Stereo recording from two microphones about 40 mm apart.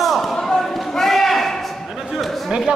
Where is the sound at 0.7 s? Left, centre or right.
Centre.